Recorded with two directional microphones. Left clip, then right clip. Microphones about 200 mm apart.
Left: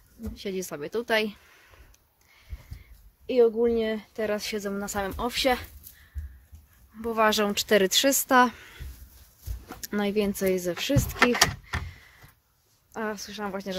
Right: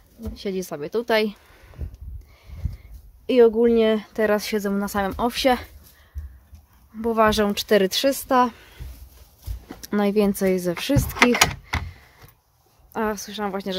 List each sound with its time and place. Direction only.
0.3 s speech: 15° right (ahead or behind)
3.3 s speech: 25° right (ahead or behind); by 5.7 s 10° right (ahead or behind)
7.0 s speech: 10° right (ahead or behind)
9.8 s speech: 10° right (ahead or behind)
12.9 s speech: 20° right (ahead or behind)